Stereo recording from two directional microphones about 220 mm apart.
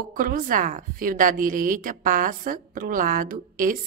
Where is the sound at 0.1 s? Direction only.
40° right (ahead or behind).